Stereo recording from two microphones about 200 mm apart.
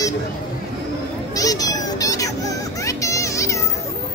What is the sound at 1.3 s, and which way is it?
Children playing, 20° left (ahead or behind).